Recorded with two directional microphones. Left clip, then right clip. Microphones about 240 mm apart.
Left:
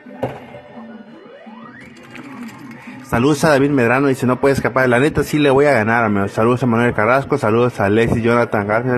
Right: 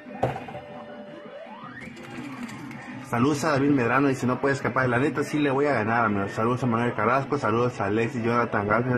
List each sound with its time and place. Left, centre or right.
3.1 s a man's voice: left